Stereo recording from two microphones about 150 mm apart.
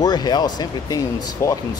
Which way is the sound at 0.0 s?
30° left (ahead or behind).